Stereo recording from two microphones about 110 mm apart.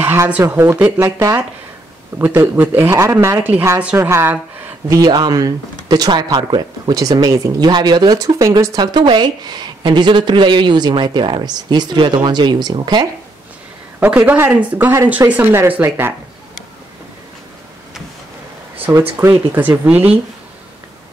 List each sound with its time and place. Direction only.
0.0 s speech: 20° right (ahead or behind)
0.9 s a woman's voice: 30° right (ahead or behind)
4.9 s speech: 35° right (ahead or behind)
13.9 s speech: 15° right (ahead or behind)
19.1 s speech: 15° right (ahead or behind)